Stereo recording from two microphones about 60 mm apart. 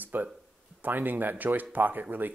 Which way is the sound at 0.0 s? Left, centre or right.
Right.